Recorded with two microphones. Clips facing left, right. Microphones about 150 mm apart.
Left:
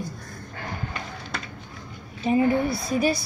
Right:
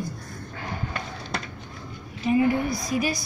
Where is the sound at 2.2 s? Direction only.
30° left (ahead or behind).